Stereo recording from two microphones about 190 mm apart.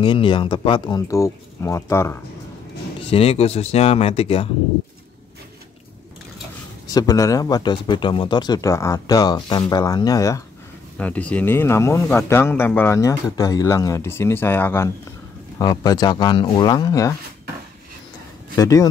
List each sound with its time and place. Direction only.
0.0 s speech: 25° left (ahead or behind)
3.1 s speech: 30° left (ahead or behind)
6.9 s speech: 20° left (ahead or behind)
11.0 s a man's voice: 5° left (ahead or behind)
18.6 s a man's voice: 15° left (ahead or behind)